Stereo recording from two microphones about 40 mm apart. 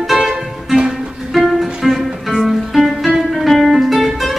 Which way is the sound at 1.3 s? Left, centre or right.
Centre.